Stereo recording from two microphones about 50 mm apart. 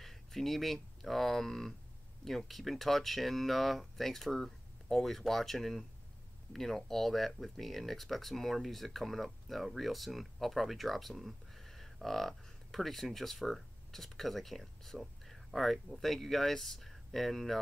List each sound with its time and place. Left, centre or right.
0.0 s speech: centre